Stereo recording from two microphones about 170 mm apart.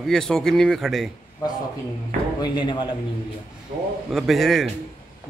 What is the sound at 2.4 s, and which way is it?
Speech, 25° left (ahead or behind).